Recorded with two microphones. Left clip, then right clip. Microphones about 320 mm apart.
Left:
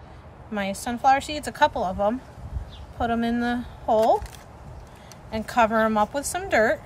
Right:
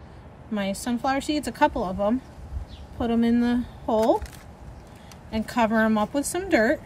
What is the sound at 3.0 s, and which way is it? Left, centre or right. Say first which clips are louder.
Speech: right 1 dB; centre.